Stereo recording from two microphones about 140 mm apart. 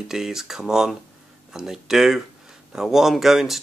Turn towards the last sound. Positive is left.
turn(degrees=0)  # may be behind; listen again after turning